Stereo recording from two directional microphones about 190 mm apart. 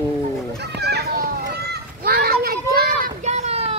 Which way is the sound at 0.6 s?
60° right (ahead or behind).